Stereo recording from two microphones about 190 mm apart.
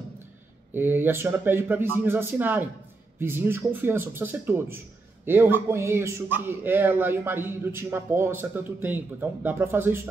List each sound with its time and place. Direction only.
0.7 s a man's voice: 10° right (ahead or behind)